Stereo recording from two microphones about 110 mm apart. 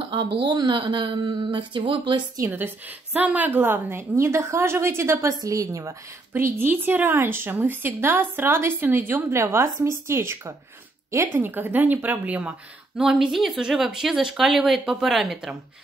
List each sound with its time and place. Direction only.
0.0 s a woman's voice: 50° right (ahead or behind)
2.3 s speech: 20° right (ahead or behind); by 15.5 s centre (ahead or behind)